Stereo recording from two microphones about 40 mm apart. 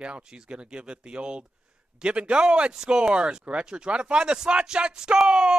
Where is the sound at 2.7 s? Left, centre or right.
Centre.